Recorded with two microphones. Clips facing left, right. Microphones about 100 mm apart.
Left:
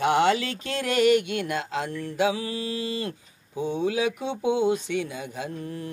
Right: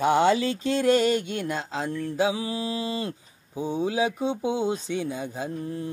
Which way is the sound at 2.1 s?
20° right (ahead or behind).